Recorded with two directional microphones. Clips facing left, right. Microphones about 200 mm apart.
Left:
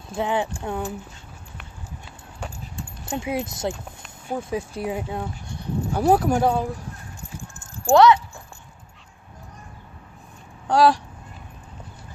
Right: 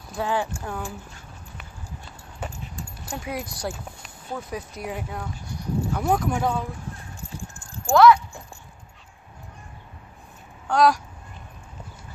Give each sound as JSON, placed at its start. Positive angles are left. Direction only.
{"t": 0.1, "sound": "speech", "side_deg": 20}
{"t": 3.1, "sound": "speech", "side_deg": 25}
{"t": 7.9, "sound": "speech", "side_deg": 30}
{"t": 10.7, "sound": "speech", "side_deg": 30}